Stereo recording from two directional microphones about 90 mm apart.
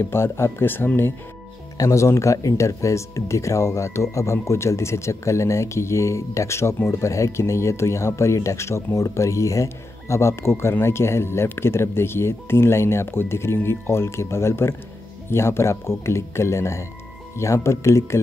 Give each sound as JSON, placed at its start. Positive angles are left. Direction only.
{"t": 0.0, "sound": "speech", "side_deg": 30}
{"t": 1.8, "sound": "speech", "side_deg": 35}